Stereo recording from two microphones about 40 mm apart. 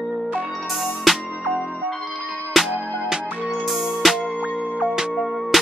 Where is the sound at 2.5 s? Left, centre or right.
Centre.